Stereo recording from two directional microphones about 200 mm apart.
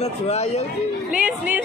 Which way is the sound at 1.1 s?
5° right (ahead or behind).